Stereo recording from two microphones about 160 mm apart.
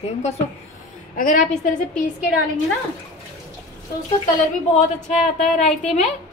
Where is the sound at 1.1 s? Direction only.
55° left (ahead or behind).